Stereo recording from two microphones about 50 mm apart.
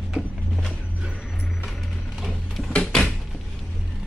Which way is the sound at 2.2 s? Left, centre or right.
Centre.